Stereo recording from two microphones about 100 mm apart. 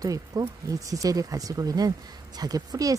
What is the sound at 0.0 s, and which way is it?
Speech, 35° right (ahead or behind).